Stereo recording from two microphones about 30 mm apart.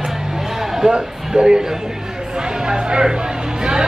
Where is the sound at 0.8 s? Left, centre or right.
Right.